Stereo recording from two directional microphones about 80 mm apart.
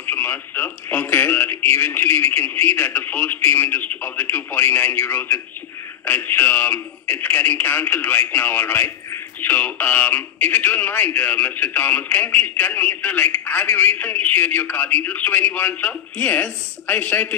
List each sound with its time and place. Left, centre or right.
0.0 s a man's voice: left